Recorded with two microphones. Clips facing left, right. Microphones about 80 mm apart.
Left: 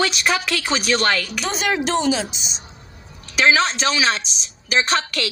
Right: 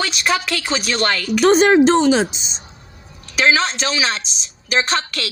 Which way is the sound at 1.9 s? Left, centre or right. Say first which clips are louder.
Right 6 dB; right.